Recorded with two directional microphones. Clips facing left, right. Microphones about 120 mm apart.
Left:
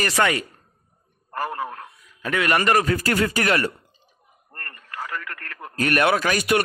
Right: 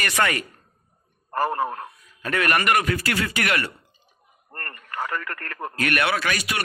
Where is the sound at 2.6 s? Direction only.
30° left (ahead or behind).